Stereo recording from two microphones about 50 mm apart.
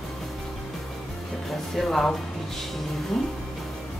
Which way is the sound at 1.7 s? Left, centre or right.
Centre.